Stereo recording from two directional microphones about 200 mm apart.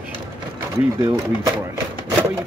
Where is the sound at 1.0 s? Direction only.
10° right (ahead or behind).